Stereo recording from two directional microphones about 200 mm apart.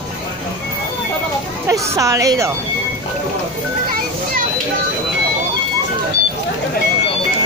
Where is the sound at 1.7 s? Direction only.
15° right (ahead or behind).